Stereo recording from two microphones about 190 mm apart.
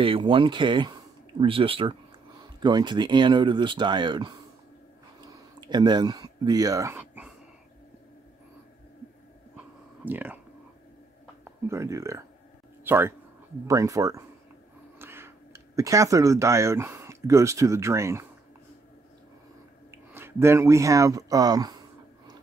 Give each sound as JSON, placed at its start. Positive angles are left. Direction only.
{"t": 0.0, "sound": "speech", "side_deg": -25}
{"t": 5.2, "sound": "a sound", "side_deg": -20}
{"t": 10.0, "sound": "speech", "side_deg": -10}
{"t": 11.4, "sound": "speech", "side_deg": -15}
{"t": 19.9, "sound": "speech", "side_deg": -10}